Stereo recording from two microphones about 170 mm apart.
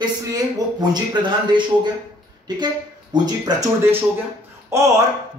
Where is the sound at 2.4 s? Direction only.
25° right (ahead or behind).